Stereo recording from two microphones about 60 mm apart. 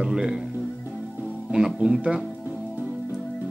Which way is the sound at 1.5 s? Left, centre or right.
Centre.